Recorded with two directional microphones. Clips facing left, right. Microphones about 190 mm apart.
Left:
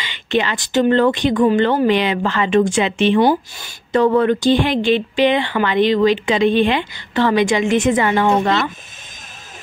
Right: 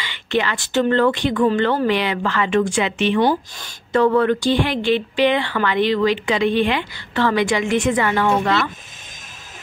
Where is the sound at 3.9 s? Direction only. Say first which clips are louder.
Left 2 dB; 20° left (ahead or behind).